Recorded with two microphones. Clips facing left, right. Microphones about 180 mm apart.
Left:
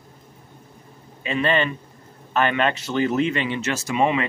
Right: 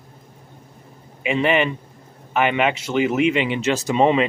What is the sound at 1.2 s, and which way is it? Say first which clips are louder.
Speech: right 3 dB; 15° right (ahead or behind).